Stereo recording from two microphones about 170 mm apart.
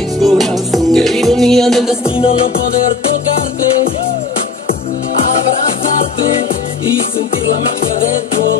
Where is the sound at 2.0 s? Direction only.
35° left (ahead or behind).